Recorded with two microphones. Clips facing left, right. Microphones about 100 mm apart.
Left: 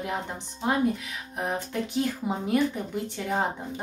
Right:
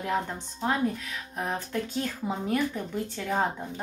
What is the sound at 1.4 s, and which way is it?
Speech, 15° left (ahead or behind).